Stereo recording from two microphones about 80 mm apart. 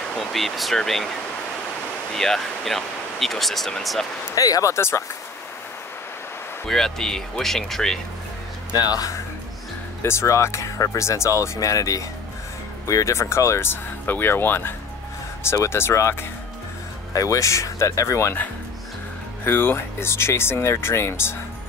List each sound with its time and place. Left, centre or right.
0.2 s speech: centre
2.1 s speech: centre
4.4 s speech: left
4.7 s speech: left
6.7 s speech: centre
8.7 s speech: left
10.0 s speech: left
19.4 s speech: left